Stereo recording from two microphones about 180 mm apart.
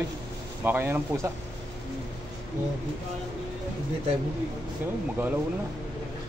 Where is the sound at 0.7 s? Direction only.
10° right (ahead or behind).